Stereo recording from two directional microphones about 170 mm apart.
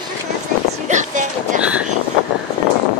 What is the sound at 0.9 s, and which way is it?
Vehicle, 45° right (ahead or behind).